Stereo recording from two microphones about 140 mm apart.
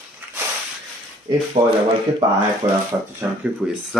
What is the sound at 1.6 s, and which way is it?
Speech, 25° right (ahead or behind).